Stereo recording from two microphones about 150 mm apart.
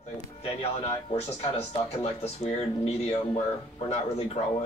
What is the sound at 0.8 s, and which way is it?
Speech, 45° left (ahead or behind).